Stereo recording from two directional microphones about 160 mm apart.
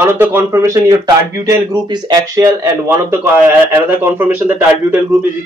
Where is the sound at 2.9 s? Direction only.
15° right (ahead or behind).